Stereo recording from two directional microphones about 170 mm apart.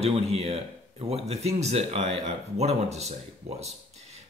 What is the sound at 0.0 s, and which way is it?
Speech, 35° right (ahead or behind).